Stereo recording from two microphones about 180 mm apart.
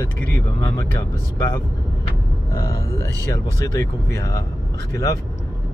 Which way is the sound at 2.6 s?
15° left (ahead or behind).